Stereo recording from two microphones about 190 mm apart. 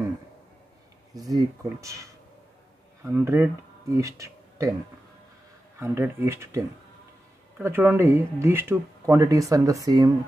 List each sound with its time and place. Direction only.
1.1 s speech: 20° right (ahead or behind)
5.8 s speech: 15° right (ahead or behind)